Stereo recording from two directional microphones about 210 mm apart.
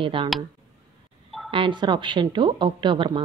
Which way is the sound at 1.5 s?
25° right (ahead or behind).